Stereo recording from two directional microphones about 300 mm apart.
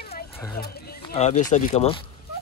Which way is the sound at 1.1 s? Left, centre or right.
Left.